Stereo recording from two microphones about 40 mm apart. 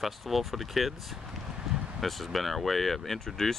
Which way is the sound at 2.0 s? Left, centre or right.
Centre.